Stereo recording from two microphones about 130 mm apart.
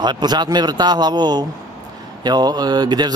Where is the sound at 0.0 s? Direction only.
35° right (ahead or behind).